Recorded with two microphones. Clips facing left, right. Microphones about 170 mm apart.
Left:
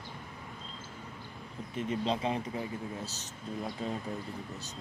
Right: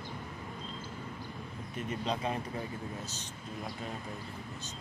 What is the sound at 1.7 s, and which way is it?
Speech, 25° left (ahead or behind).